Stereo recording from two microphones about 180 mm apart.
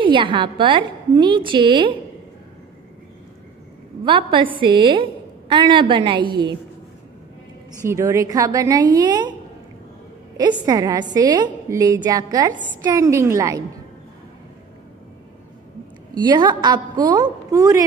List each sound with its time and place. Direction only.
0.0 s a woman's voice: 30° right (ahead or behind)
4.0 s a woman's voice: 30° right (ahead or behind)
7.8 s a woman's voice: 15° right (ahead or behind)
10.6 s a woman's voice: 20° right (ahead or behind)
16.2 s a woman's voice: 25° right (ahead or behind)